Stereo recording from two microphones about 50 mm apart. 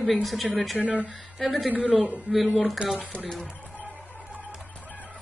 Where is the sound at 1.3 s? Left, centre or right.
Centre.